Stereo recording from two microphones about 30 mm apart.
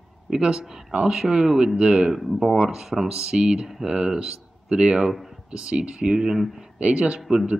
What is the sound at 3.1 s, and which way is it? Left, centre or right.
Speech, right.